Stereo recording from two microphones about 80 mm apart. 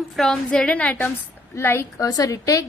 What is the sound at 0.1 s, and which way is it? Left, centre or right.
Speech, centre.